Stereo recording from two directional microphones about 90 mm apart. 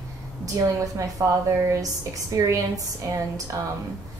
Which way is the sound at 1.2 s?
45° right (ahead or behind).